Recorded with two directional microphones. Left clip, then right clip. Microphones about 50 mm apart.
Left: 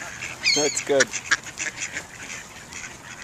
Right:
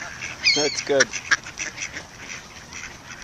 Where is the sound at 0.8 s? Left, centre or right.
Centre.